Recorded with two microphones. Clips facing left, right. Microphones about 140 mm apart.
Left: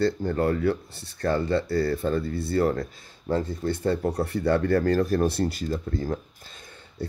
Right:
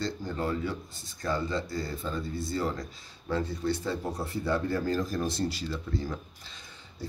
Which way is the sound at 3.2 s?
45° left (ahead or behind).